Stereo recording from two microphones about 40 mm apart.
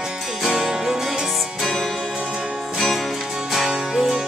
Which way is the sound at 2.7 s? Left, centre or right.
Centre.